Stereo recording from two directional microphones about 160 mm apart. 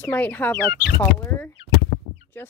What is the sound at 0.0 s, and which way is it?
Speech, 10° left (ahead or behind).